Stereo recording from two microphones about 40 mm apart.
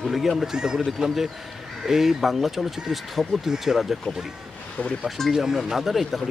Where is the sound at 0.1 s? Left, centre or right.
Centre.